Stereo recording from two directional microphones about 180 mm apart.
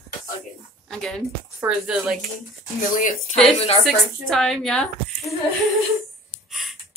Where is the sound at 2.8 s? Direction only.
50° left (ahead or behind).